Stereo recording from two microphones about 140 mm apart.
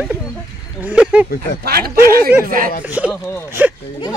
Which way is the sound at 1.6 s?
90° right.